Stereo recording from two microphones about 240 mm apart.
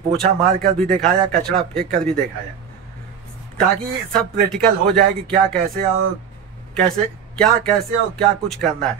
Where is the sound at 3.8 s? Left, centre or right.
Centre.